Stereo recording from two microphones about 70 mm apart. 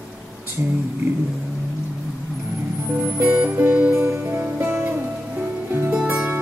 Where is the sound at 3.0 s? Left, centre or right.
Right.